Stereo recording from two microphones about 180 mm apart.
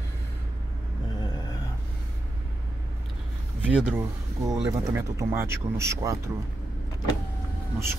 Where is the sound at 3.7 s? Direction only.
5° right (ahead or behind).